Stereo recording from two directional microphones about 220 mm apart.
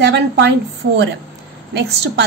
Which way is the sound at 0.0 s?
50° right (ahead or behind).